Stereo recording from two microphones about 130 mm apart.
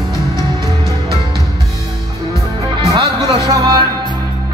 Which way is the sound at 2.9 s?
30° right (ahead or behind).